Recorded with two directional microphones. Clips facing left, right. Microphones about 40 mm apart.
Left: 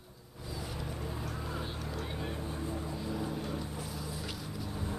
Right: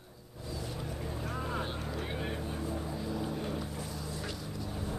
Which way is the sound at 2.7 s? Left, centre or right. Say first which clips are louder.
Right 1 dB; centre.